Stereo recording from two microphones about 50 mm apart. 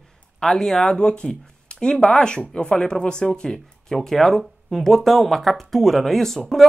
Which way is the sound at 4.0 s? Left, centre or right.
Centre.